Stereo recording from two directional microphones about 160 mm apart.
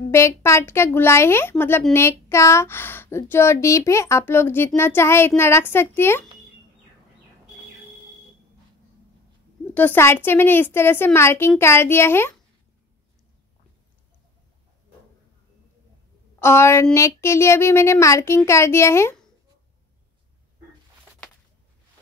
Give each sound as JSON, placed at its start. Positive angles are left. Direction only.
{"t": 0.1, "sound": "speech", "side_deg": 15}
{"t": 9.8, "sound": "speech", "side_deg": 15}
{"t": 16.3, "sound": "a woman's voice", "side_deg": 15}